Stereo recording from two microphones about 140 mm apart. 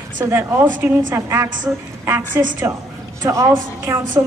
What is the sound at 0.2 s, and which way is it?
A woman's voice, 20° right (ahead or behind).